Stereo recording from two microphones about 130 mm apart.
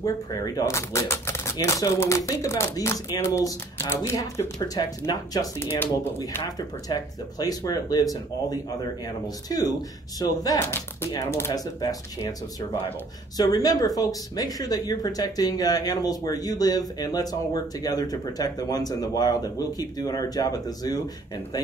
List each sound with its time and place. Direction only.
0.6 s speech: 20° left (ahead or behind)
5.6 s speech: 15° left (ahead or behind)
6.9 s speech: 30° left (ahead or behind)